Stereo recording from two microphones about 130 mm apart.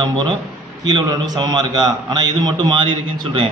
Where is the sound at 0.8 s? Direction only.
35° right (ahead or behind).